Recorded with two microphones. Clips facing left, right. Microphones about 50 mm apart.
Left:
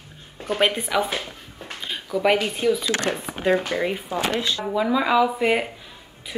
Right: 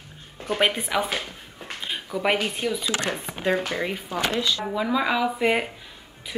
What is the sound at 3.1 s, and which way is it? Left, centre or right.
Speech, centre.